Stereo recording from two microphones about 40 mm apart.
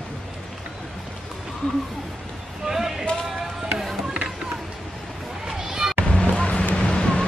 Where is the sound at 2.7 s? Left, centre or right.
Centre.